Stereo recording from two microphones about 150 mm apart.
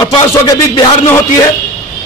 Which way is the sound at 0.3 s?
25° left (ahead or behind).